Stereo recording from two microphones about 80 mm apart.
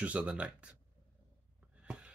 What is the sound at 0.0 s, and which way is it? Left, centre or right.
Speech, centre.